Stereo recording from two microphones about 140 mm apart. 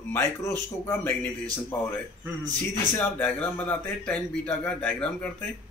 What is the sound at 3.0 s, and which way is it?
Speech, 10° left (ahead or behind).